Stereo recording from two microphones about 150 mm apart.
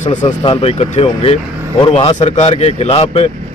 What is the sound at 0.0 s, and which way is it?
Speech, 55° left (ahead or behind).